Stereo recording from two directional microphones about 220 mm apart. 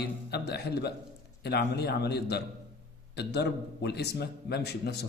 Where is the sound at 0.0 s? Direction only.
45° left (ahead or behind).